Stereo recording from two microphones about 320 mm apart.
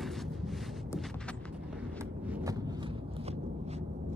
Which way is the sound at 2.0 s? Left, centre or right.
Centre.